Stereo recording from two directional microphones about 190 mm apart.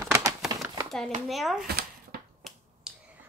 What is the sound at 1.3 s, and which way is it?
Speech, centre (ahead or behind).